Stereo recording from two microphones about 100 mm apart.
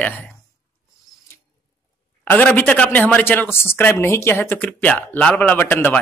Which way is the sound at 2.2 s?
15° left (ahead or behind).